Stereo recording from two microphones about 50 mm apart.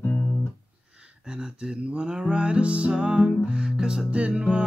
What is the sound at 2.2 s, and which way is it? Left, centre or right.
Music, right.